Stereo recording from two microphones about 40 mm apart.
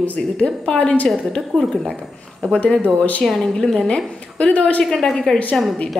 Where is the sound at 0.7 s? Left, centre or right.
Left.